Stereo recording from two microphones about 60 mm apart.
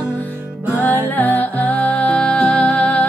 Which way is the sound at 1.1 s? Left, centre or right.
Left.